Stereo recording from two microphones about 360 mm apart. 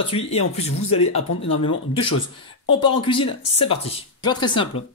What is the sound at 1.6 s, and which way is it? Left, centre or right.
Speech, centre.